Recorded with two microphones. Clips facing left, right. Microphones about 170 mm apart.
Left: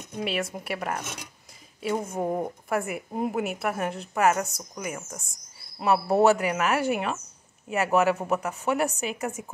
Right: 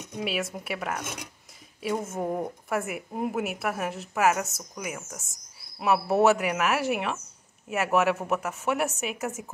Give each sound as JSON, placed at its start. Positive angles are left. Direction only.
{"t": 0.0, "sound": "a woman's voice", "side_deg": 0}
{"t": 2.2, "sound": "a woman's voice", "side_deg": 10}